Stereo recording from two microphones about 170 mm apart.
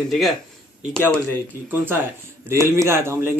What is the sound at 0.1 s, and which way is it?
A man's voice, centre (ahead or behind).